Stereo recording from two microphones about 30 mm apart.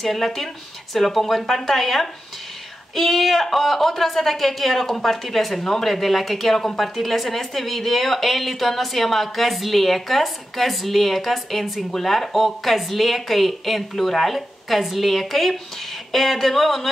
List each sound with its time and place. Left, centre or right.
0.0 s speech: centre
5.6 s speech: centre
5.9 s speech: centre